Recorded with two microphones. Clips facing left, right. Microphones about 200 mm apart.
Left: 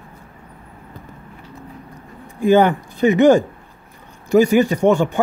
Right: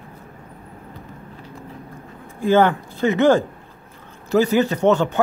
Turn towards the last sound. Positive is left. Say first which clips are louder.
# left 2 dB
turn(degrees=10)  # may be behind; listen again after turning